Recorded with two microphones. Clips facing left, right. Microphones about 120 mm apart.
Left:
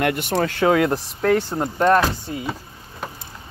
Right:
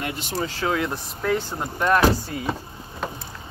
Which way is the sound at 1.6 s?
40° left (ahead or behind).